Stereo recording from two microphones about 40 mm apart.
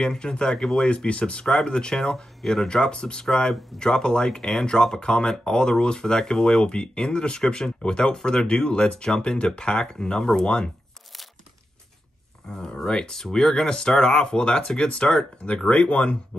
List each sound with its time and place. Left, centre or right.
0.0 s speech: left
0.8 s speech: left
12.4 s a sound: centre
12.8 s speech: centre